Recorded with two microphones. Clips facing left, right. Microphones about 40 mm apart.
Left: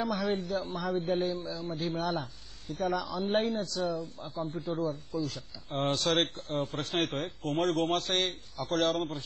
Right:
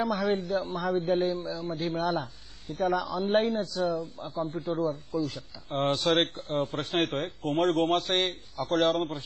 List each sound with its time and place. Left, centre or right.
0.0 s a man's voice: right
5.9 s speech: centre
6.1 s a man's voice: right